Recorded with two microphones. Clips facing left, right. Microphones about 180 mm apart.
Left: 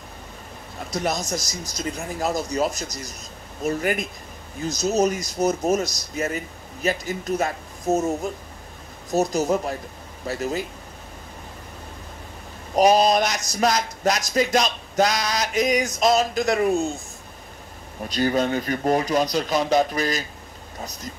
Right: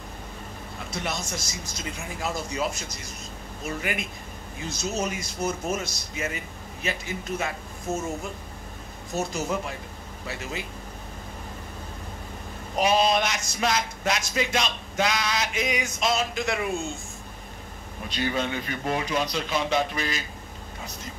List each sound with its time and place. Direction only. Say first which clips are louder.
0.8 s speech: left 7 dB; 40° left (ahead or behind)
12.7 s speech: left 5 dB; 40° left (ahead or behind)
18.0 s speech: left 6 dB; 40° left (ahead or behind)